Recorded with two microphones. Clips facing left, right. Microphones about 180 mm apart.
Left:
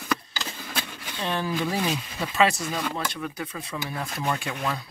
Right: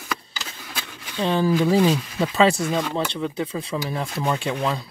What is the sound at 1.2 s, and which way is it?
Speech, 30° right (ahead or behind).